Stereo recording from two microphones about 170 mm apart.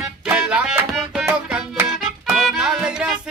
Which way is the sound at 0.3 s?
5° right (ahead or behind).